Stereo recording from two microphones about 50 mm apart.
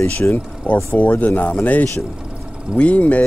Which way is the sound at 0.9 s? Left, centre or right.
Left.